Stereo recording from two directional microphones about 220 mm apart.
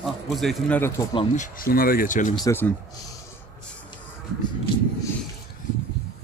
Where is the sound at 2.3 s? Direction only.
15° left (ahead or behind).